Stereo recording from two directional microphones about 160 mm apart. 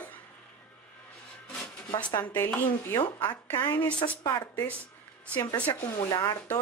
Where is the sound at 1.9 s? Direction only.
10° left (ahead or behind).